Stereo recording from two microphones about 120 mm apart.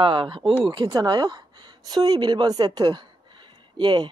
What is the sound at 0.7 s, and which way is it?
A woman's voice, 35° right (ahead or behind).